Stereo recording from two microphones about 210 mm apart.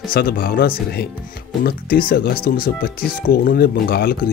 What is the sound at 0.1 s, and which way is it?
Speech, 45° left (ahead or behind).